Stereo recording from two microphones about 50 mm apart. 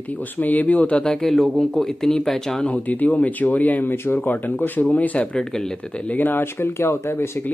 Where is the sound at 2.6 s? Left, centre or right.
Left.